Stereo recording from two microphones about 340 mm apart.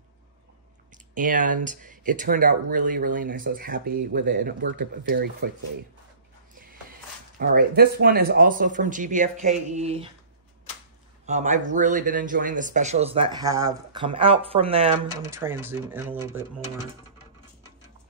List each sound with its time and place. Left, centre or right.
1.1 s speech: right
7.3 s speech: right
11.2 s speech: right